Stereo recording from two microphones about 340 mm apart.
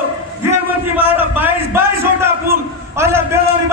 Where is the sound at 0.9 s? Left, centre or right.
Centre.